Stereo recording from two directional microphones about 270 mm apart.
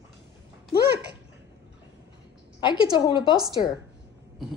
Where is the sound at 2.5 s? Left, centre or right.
Centre.